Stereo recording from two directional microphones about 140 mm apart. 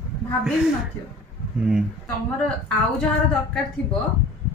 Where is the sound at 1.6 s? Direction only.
5° right (ahead or behind).